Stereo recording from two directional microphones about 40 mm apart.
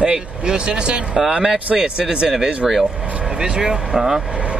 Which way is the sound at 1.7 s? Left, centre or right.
Centre.